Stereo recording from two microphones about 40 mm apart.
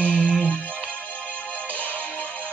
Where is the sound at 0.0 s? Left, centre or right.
Left.